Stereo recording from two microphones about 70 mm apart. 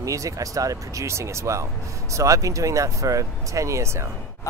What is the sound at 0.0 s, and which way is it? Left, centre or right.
Speech, right.